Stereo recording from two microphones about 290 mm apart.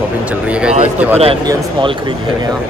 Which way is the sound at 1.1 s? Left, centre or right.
Centre.